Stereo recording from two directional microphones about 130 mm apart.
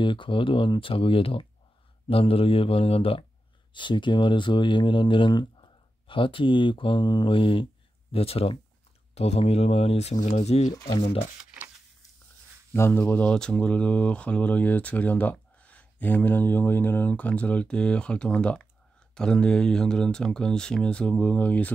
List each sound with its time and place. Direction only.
0.0 s speech: 40° left (ahead or behind); by 10.7 s 60° left (ahead or behind)
10.7 s speech: 35° left (ahead or behind)
12.7 s speech: 20° left (ahead or behind)